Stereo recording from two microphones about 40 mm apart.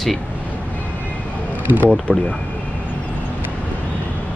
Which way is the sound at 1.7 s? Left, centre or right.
Right.